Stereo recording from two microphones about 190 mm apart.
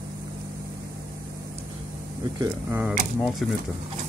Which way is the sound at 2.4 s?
15° right (ahead or behind).